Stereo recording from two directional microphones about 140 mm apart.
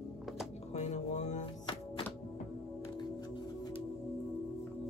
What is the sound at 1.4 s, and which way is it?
Music, 35° left (ahead or behind).